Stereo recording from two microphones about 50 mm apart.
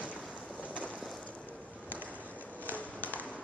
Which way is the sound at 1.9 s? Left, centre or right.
Right.